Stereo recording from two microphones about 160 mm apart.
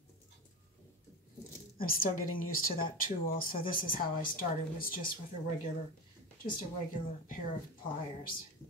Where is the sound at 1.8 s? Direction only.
65° left (ahead or behind).